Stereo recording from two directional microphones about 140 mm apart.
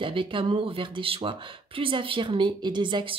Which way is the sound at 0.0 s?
35° right (ahead or behind).